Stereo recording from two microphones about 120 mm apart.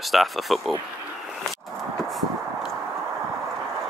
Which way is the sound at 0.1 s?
Centre (ahead or behind).